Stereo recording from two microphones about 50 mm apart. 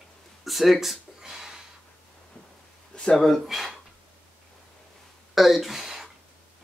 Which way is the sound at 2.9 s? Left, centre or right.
Centre.